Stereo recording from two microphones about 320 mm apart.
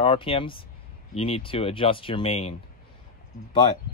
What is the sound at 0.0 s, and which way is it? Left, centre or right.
A man's voice, centre.